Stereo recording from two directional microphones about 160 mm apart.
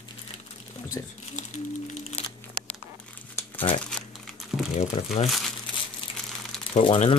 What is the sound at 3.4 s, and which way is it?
Crumpling, 15° left (ahead or behind).